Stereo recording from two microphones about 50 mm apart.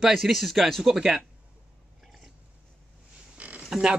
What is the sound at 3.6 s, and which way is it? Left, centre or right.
Speech, centre.